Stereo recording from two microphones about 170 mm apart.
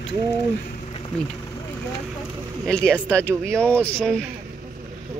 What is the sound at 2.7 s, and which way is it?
Speech, 5° left (ahead or behind).